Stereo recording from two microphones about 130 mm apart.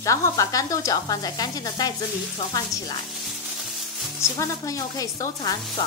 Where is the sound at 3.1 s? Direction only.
Centre (ahead or behind).